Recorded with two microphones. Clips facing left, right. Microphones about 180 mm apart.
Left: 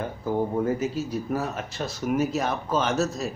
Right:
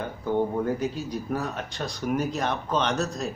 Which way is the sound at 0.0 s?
Centre (ahead or behind).